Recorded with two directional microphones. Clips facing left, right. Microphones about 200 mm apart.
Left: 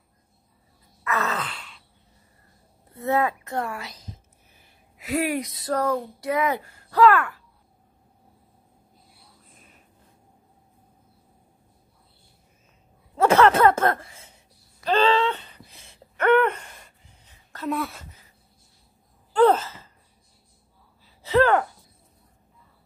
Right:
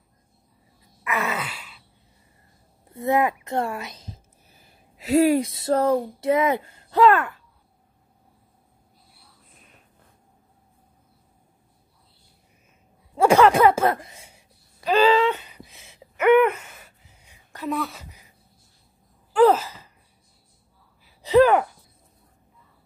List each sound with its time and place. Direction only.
1.0 s wail: 10° right (ahead or behind)
2.9 s a woman's voice: 15° right (ahead or behind)
13.1 s speech: 10° right (ahead or behind)
14.9 s a sound: 10° right (ahead or behind)
17.6 s speech: centre (ahead or behind)
19.3 s speech: 10° right (ahead or behind)
21.2 s speech: 15° right (ahead or behind)